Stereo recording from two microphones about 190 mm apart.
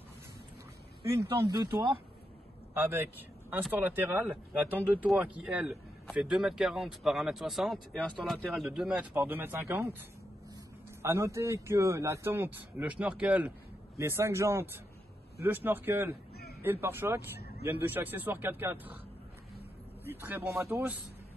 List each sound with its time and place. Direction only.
1.3 s speech: 20° right (ahead or behind)
20.1 s speech: 10° right (ahead or behind)